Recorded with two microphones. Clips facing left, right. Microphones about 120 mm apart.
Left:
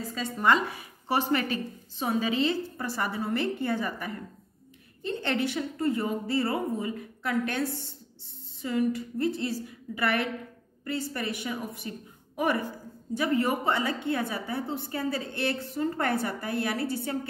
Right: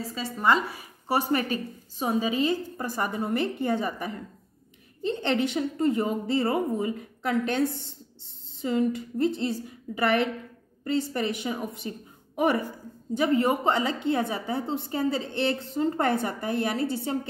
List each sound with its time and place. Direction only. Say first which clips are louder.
0.0 s speech: right 1 dB; 5° right (ahead or behind)
1.0 s a woman's voice: right 1 dB; 40° right (ahead or behind)
2.0 s a woman's voice: right 2 dB; 15° right (ahead or behind)
13.1 s a woman's voice: right 3 dB; 20° right (ahead or behind)